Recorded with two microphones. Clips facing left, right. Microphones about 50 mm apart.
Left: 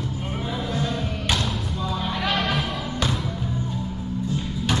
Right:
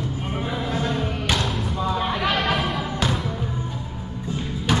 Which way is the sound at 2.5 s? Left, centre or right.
Centre.